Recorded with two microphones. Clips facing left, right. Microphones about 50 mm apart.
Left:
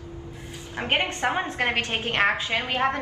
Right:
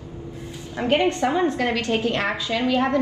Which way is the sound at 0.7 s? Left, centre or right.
Left.